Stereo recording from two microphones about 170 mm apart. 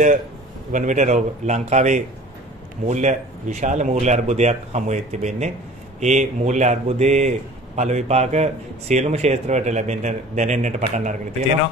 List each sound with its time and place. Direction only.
0.7 s speech: 45° right (ahead or behind)